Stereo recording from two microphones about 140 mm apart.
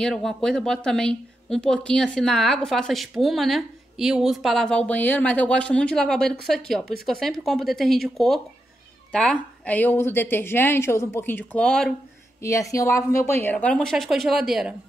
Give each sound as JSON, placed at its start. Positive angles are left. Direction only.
{"t": 0.0, "sound": "a woman's voice", "side_deg": 0}
{"t": 12.4, "sound": "a woman's voice", "side_deg": 20}